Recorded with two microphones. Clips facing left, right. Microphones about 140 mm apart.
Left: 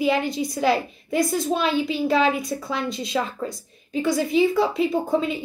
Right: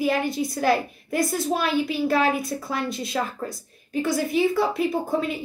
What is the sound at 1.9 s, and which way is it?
Speech, 25° left (ahead or behind).